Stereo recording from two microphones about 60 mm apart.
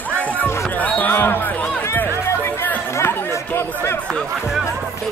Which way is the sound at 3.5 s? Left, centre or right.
Left.